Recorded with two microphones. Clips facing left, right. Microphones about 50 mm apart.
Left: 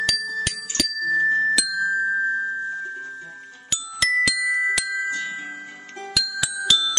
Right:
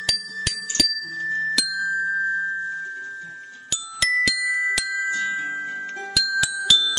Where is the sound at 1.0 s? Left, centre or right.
Centre.